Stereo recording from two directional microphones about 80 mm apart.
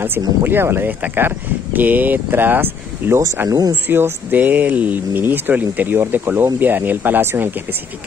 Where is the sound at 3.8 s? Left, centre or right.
Right.